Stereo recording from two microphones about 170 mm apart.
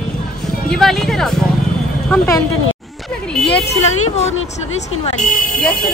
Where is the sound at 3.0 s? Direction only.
5° left (ahead or behind).